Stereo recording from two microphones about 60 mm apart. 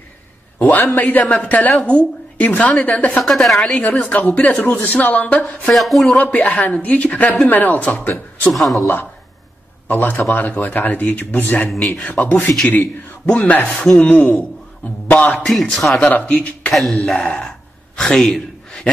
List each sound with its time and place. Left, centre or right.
0.6 s speech: left
3.2 s a woman's voice: centre
3.7 s speech: left
5.7 s a woman's voice: centre
6.1 s speech: left
8.5 s a woman's voice: centre
9.8 s a man's voice: left
13.7 s a man's voice: centre
15.0 s speech: left
15.7 s a woman's voice: centre
16.1 s speech: left
16.9 s gasp: centre